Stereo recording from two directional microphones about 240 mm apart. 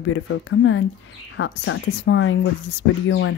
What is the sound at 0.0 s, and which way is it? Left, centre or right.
Speech, left.